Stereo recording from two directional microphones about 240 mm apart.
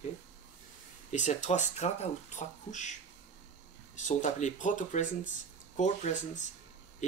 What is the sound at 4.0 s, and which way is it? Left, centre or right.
Speech, left.